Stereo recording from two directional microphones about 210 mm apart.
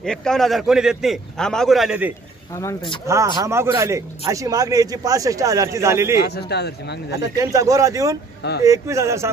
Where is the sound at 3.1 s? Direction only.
15° right (ahead or behind).